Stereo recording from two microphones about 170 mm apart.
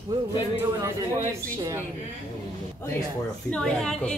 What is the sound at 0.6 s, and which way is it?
Speech, 15° right (ahead or behind).